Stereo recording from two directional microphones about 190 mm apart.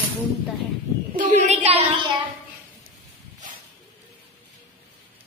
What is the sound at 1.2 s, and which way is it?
Speech, 40° right (ahead or behind).